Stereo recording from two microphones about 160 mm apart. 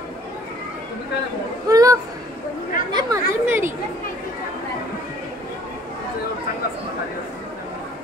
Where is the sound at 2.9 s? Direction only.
25° right (ahead or behind).